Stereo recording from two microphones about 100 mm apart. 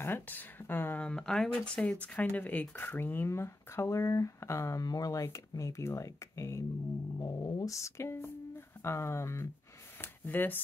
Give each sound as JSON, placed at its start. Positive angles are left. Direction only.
{"t": 0.0, "sound": "speech", "side_deg": 20}
{"t": 7.2, "sound": "speech", "side_deg": 40}